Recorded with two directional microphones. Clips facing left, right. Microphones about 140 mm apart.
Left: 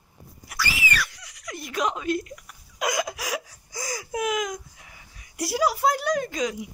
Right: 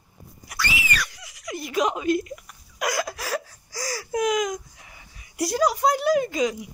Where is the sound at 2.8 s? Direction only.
20° left (ahead or behind).